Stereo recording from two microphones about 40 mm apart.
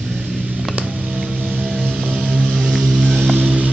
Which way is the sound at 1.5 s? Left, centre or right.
Centre.